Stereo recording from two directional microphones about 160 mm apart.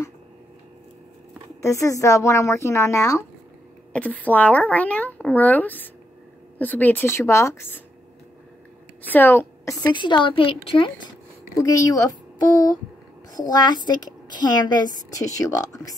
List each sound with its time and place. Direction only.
1.6 s speech: 20° left (ahead or behind)
9.1 s a woman's voice: 10° left (ahead or behind)
9.9 s speech: 30° left (ahead or behind)
11.6 s a woman's voice: 20° left (ahead or behind)
13.4 s a woman's voice: 20° left (ahead or behind)